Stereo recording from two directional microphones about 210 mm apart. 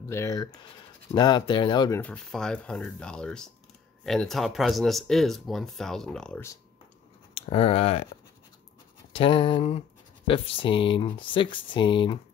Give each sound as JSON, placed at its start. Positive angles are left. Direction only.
{"t": 0.1, "sound": "speech", "side_deg": 15}
{"t": 2.0, "sound": "speech", "side_deg": 5}
{"t": 7.4, "sound": "speech", "side_deg": 25}
{"t": 9.1, "sound": "speech", "side_deg": 25}